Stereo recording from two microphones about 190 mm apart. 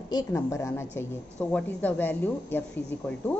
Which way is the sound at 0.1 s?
20° left (ahead or behind).